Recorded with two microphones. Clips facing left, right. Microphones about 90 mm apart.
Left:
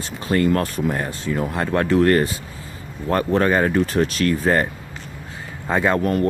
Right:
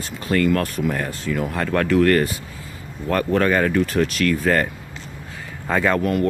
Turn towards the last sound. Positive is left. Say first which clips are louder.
# left 1 dB
turn(degrees=35)  # may be behind; listen again after turning